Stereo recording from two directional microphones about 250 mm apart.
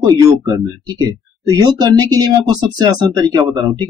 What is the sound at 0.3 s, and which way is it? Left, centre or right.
Speech, centre.